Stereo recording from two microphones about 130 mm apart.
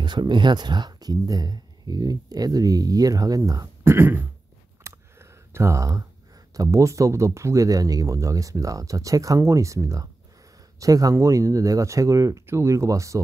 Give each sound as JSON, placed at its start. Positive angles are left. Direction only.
{"t": 0.0, "sound": "speech", "side_deg": -35}
{"t": 4.8, "sound": "clicking", "side_deg": -20}
{"t": 6.5, "sound": "speech", "side_deg": -25}